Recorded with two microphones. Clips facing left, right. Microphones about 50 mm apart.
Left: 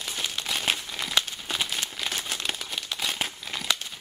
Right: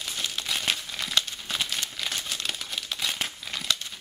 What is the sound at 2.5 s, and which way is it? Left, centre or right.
Crumpling, centre.